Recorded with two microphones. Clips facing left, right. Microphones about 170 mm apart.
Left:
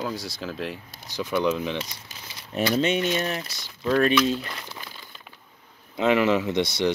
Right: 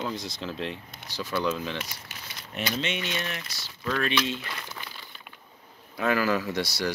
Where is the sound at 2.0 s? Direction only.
40° left (ahead or behind).